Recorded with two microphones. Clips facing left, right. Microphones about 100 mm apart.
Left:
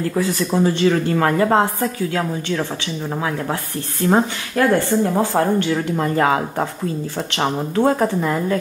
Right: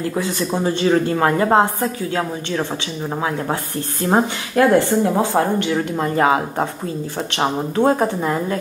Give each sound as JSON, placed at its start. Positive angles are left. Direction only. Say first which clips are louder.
{"t": 0.8, "sound": "speech", "louder": "right 1 dB", "side_deg": -35}
{"t": 4.1, "sound": "speech", "louder": "even", "side_deg": -25}
{"t": 7.3, "sound": "speech", "louder": "right 1 dB", "side_deg": -25}